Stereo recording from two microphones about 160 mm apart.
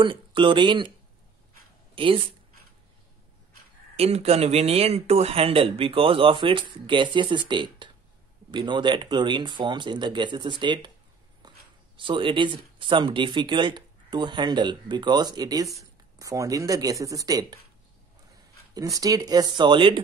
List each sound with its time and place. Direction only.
0.0 s speech: 30° right (ahead or behind)
2.0 s speech: 35° right (ahead or behind)
3.9 s speech: 40° right (ahead or behind)
11.4 s a sound: 25° right (ahead or behind)
12.0 s speech: 30° right (ahead or behind)
18.8 s speech: 20° right (ahead or behind)